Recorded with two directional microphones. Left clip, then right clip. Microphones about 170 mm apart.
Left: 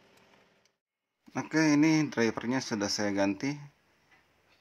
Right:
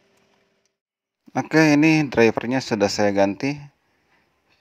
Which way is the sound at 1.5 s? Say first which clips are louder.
Right 9 dB; 45° right (ahead or behind).